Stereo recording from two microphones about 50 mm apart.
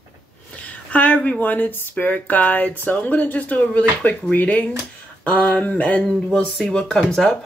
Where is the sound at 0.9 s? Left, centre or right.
Left.